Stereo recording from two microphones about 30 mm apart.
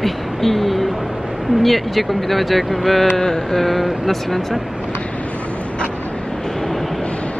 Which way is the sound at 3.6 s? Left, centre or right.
Centre.